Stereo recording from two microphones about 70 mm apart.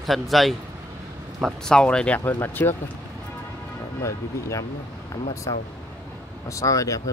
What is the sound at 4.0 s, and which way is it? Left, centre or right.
Speech, left.